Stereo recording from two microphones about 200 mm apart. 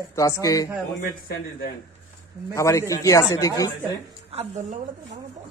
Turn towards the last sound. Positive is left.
turn(degrees=-35)  # may be behind; listen again after turning